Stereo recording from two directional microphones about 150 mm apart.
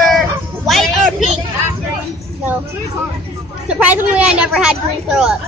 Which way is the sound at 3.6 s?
10° right (ahead or behind).